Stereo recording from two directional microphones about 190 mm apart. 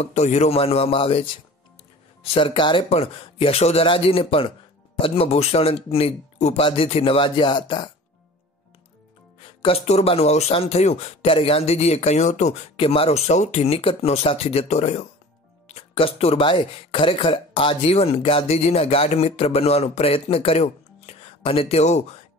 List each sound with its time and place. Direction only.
0.0 s speech: 35° left (ahead or behind)
9.6 s speech: 30° left (ahead or behind)